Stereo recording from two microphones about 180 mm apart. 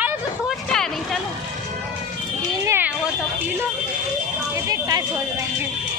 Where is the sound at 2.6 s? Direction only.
15° right (ahead or behind).